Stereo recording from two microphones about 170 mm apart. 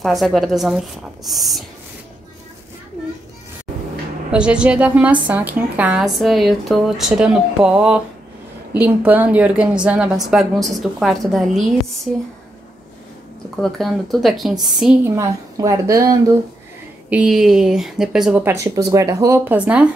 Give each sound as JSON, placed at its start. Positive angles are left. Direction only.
{"t": 0.0, "sound": "a woman's voice", "side_deg": 0}
{"t": 4.3, "sound": "a woman's voice", "side_deg": -5}
{"t": 13.6, "sound": "a woman's voice", "side_deg": 0}
{"t": 15.0, "sound": "speech", "side_deg": -20}
{"t": 17.1, "sound": "a woman's voice", "side_deg": -5}
{"t": 18.4, "sound": "speech", "side_deg": -15}